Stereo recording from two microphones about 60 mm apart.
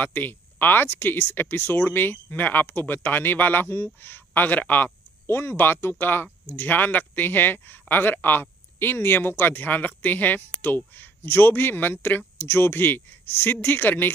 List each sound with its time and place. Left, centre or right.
0.0 s speech: left
5.2 s speech: left